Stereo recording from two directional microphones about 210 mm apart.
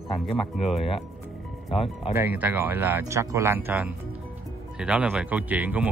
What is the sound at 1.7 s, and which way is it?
Speech, 25° left (ahead or behind).